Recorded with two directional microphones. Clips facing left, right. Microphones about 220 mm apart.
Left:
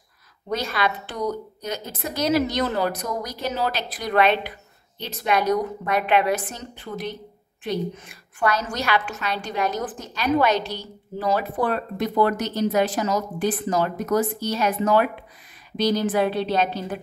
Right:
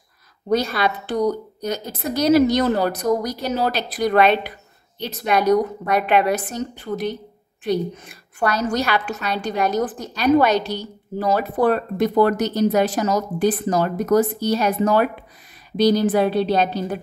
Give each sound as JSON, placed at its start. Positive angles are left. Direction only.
{"t": 0.5, "sound": "speech", "side_deg": -40}